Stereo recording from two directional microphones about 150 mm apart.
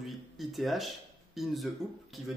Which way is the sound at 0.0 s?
Centre (ahead or behind).